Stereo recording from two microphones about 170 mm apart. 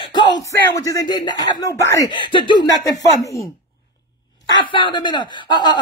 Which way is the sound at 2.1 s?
25° left (ahead or behind).